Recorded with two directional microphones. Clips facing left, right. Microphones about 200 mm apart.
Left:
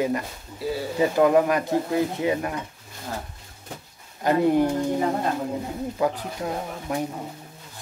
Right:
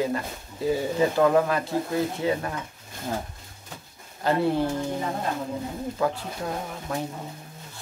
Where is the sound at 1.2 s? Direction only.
20° left (ahead or behind).